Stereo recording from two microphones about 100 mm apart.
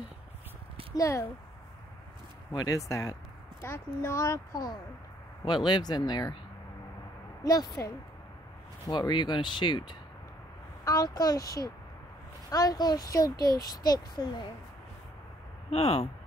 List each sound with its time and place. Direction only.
0.9 s a child's voice: 30° left (ahead or behind)
2.5 s a child's voice: 40° left (ahead or behind)
5.4 s speech: 50° left (ahead or behind)
7.4 s a child's voice: 40° left (ahead or behind)
8.9 s speech: 50° left (ahead or behind)
10.8 s a child's voice: 35° left (ahead or behind)
15.7 s speech: 75° left (ahead or behind)